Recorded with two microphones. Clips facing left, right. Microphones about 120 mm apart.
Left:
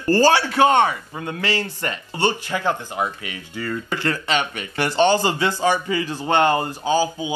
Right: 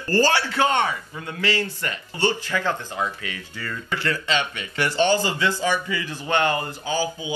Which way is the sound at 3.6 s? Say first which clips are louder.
Left 3 dB; 40° left (ahead or behind).